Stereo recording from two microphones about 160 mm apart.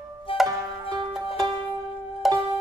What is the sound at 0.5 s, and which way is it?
Music, 25° right (ahead or behind).